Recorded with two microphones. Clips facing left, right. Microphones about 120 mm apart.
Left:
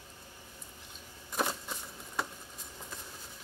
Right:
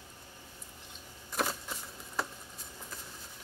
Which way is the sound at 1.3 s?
Centre (ahead or behind).